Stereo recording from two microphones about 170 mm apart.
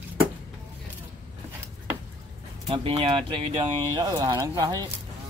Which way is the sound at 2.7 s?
30° right (ahead or behind).